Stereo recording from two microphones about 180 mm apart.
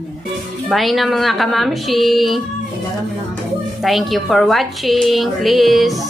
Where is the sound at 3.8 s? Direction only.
Centre (ahead or behind).